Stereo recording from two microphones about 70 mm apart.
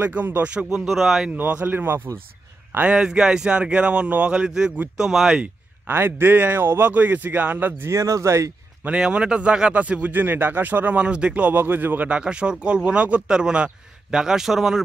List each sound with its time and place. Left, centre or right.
0.0 s a man's voice: right
0.7 s speech: centre
1.3 s a man's voice: right
2.8 s speech: centre
5.9 s a man's voice: right
7.9 s speech: right
8.8 s a man's voice: centre
12.2 s speech: centre